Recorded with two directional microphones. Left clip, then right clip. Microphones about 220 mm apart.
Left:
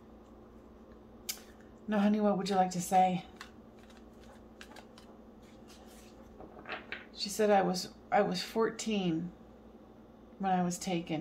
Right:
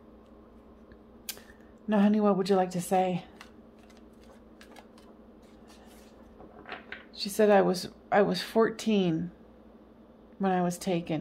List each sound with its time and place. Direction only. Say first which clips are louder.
1.9 s speech: right 5 dB; 45° right (ahead or behind)
7.2 s speech: right 5 dB; 45° right (ahead or behind)
10.4 s speech: right 4 dB; 45° right (ahead or behind)